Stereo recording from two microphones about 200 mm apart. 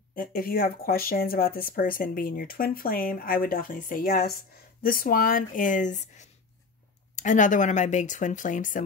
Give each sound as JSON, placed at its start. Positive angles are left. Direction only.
{"t": 0.1, "sound": "speech", "side_deg": 45}